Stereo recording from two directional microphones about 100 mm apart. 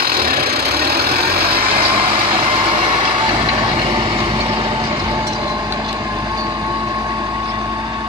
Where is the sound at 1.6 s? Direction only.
70° right (ahead or behind); by 3.5 s 45° right (ahead or behind).